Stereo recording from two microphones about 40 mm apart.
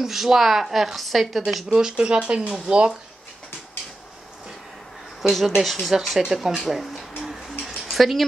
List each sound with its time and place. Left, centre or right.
0.0 s speech: centre
1.8 s speech: right
5.2 s speech: centre
6.6 s speech: centre
7.2 s a sound: centre